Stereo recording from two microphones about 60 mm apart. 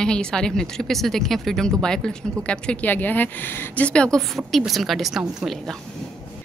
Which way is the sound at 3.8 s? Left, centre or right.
Centre.